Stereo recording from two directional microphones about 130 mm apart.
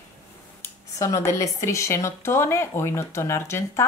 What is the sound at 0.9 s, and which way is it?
Speech, 25° left (ahead or behind).